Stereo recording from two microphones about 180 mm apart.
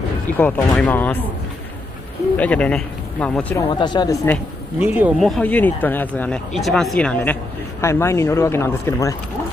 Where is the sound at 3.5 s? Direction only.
25° left (ahead or behind).